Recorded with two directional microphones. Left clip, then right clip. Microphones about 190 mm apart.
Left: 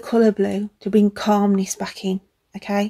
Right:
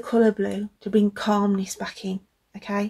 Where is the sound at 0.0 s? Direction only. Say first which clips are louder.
Left 3 dB; 45° left (ahead or behind).